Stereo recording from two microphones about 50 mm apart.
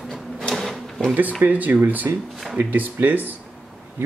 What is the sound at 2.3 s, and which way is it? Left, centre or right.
Speech, centre.